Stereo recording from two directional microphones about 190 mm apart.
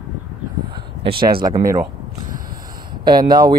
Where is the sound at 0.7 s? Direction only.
25° right (ahead or behind).